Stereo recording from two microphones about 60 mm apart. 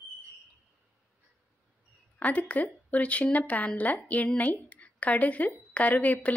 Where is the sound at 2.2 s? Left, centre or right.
Left.